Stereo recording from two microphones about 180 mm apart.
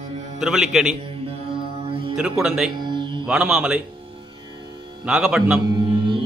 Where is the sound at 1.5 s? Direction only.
30° right (ahead or behind).